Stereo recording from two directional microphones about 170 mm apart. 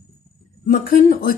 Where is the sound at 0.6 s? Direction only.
55° left (ahead or behind).